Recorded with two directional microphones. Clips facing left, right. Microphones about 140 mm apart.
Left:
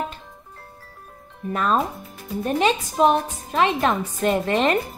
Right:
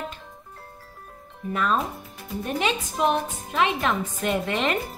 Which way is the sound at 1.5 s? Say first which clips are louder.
Left 3 dB; 40° left (ahead or behind).